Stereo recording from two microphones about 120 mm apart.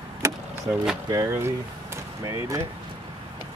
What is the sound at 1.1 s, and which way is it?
Speech, 25° right (ahead or behind).